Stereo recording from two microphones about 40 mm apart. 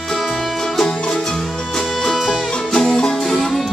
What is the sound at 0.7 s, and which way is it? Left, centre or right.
Music, centre.